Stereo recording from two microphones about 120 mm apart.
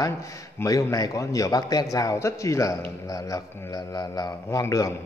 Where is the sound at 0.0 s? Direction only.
25° left (ahead or behind).